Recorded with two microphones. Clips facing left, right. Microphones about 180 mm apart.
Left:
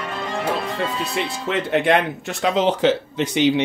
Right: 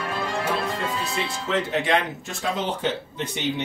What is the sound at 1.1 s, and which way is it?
Speech, 65° left (ahead or behind).